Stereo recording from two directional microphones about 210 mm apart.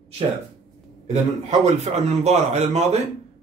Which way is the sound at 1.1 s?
30° right (ahead or behind).